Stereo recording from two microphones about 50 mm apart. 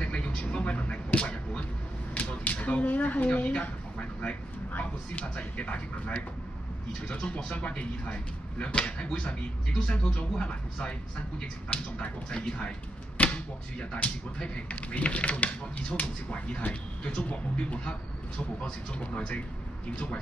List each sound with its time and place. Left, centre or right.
0.0 s vehicle: left
0.3 s a sound: centre
2.1 s speech: left
13.2 s arrow: left
13.7 s speech: left